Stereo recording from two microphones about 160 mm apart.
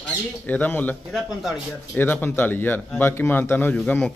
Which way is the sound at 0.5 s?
10° left (ahead or behind).